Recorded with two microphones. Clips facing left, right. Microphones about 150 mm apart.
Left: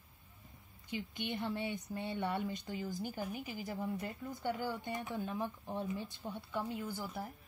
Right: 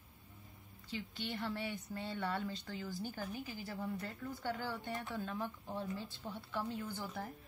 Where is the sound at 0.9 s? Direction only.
20° left (ahead or behind).